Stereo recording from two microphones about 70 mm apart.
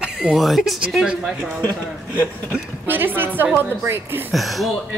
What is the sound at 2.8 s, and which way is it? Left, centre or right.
A woman's voice, right.